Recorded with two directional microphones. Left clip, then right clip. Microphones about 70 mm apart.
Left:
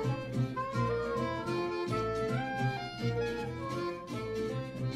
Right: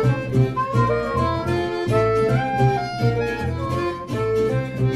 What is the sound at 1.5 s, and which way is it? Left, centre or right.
Music, left.